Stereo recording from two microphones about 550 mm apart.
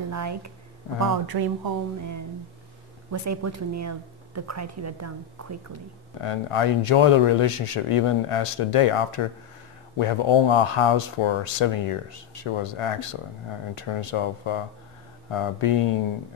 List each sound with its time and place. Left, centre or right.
0.1 s speech: right
6.2 s speech: left